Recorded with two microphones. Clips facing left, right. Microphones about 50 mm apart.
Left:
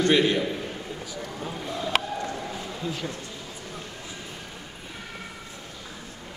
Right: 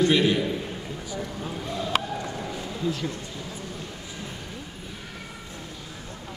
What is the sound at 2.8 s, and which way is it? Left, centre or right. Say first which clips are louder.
Speech: right 4 dB; centre.